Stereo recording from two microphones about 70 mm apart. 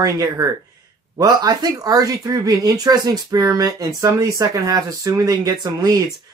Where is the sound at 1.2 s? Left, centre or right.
Right.